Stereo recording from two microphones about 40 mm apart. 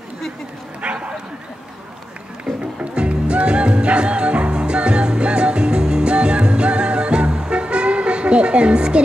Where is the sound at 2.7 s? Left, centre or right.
Right.